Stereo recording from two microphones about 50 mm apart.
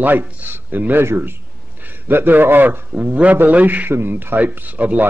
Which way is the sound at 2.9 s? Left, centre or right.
Right.